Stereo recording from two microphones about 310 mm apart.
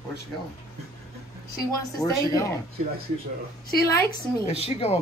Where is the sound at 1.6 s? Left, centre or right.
Centre.